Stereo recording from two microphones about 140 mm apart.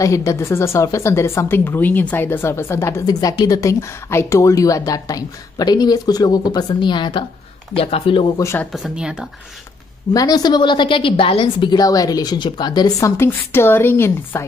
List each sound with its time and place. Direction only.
0.0 s speech: 20° left (ahead or behind); by 8.3 s 40° left (ahead or behind)
8.4 s speech: 20° left (ahead or behind)
8.7 s speech: 5° right (ahead or behind)
10.1 s speech: 25° left (ahead or behind)